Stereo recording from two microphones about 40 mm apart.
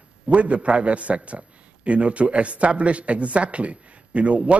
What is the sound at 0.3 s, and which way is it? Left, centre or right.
Speech, right.